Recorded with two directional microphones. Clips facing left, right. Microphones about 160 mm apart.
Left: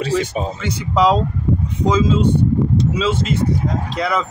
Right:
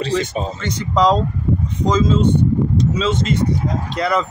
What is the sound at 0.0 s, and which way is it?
Speech, 10° left (ahead or behind).